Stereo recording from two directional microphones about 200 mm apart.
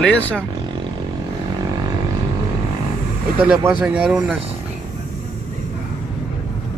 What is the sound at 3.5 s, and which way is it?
Speech, 5° right (ahead or behind).